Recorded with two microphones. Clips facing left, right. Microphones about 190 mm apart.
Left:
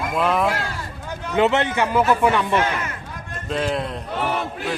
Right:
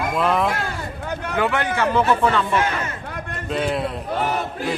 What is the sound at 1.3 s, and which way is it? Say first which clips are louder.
A man's voice: left 4 dB; 25° left (ahead or behind).